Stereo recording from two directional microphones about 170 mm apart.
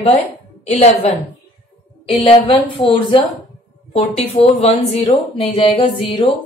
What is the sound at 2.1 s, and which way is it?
A woman's voice, 30° left (ahead or behind).